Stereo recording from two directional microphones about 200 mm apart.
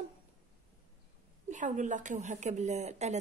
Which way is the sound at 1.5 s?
40° right (ahead or behind).